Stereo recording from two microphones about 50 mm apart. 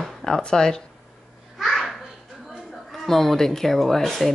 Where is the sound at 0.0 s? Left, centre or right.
Centre.